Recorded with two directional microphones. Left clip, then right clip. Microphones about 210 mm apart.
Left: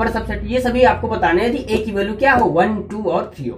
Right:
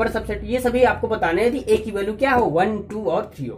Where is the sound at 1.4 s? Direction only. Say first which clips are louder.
Even; 40° right (ahead or behind).